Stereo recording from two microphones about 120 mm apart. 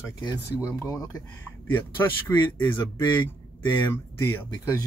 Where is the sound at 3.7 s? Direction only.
15° left (ahead or behind).